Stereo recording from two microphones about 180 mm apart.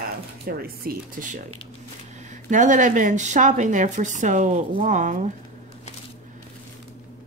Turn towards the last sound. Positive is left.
turn(degrees=-45)  # may be behind; listen again after turning